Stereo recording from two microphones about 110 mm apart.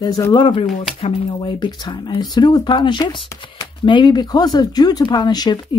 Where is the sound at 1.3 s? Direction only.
45° left (ahead or behind).